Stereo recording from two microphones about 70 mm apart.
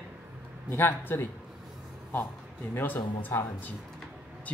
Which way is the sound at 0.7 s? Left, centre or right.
Left.